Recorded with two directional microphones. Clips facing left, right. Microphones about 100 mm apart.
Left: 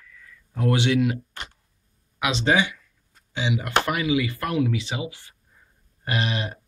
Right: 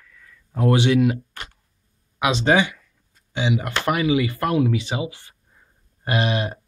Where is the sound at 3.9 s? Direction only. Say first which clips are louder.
Right 3 dB; 40° right (ahead or behind).